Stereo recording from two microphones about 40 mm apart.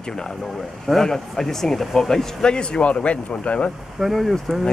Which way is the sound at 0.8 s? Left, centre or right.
Centre.